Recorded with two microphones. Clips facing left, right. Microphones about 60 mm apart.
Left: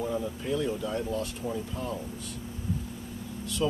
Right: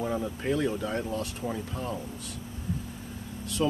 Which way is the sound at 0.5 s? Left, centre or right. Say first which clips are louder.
Right 2 dB; right.